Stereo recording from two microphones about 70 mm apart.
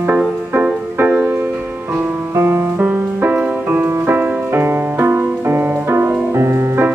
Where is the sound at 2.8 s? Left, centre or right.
Right.